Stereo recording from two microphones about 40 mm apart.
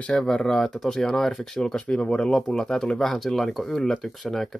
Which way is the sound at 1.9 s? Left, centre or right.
Left.